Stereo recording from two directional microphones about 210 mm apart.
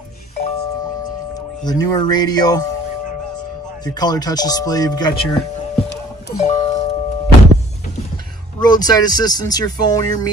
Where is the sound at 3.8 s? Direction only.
20° left (ahead or behind).